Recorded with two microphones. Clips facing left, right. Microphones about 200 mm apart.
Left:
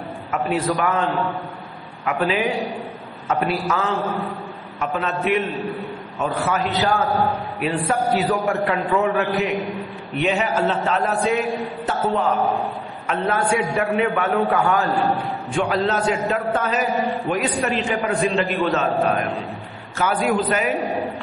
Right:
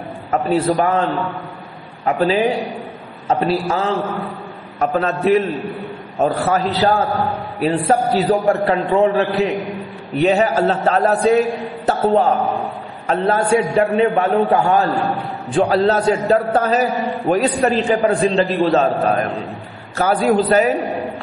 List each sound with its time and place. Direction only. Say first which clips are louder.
0.3 s a man's voice: right 5 dB; 35° right (ahead or behind)
2.0 s a man's voice: right 5 dB; 35° right (ahead or behind)